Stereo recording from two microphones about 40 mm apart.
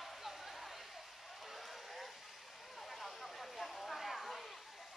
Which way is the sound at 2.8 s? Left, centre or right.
Centre.